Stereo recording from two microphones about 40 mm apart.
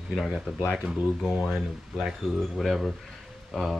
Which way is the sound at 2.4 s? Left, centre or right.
Centre.